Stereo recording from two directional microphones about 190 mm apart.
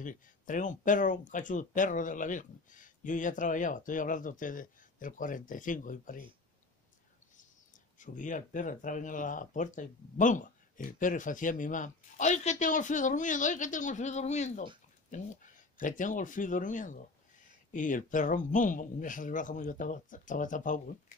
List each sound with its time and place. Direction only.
0.0 s speech: 45° left (ahead or behind)
8.0 s speech: 40° left (ahead or behind)
15.8 s speech: 45° left (ahead or behind)